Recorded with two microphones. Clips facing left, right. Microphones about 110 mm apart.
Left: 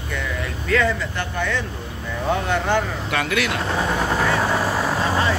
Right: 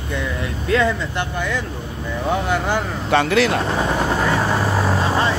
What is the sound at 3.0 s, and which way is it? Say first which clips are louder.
Speech: right 6 dB; 30° right (ahead or behind).